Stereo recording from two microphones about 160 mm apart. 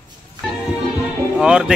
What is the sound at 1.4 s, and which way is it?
Speech, 5° right (ahead or behind).